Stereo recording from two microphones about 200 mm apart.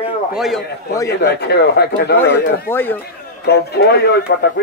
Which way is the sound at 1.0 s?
55° left (ahead or behind).